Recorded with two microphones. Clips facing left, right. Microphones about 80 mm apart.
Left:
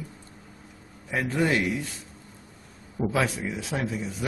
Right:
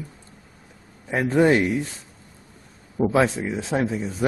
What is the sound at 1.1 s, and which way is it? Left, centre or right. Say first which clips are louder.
Speech: right 7 dB; right.